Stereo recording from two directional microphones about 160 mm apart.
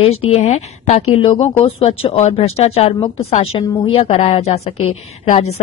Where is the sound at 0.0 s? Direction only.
40° left (ahead or behind).